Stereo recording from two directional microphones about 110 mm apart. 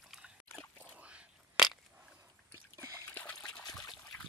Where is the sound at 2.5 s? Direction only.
35° right (ahead or behind).